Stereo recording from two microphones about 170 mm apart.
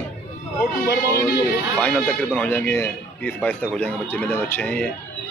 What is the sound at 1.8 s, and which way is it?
Speech, 5° left (ahead or behind).